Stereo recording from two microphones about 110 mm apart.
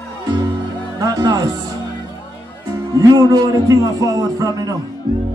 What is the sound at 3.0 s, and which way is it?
A man's voice, 35° right (ahead or behind).